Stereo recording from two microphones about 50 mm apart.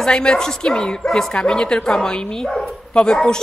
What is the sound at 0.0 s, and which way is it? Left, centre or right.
Speech, centre.